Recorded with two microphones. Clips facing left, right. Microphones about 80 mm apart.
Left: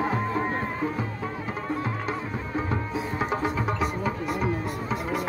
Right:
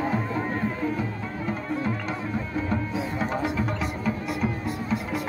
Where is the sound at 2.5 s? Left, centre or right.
Centre.